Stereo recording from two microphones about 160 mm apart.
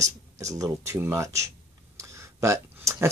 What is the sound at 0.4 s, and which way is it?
Speech, 20° right (ahead or behind).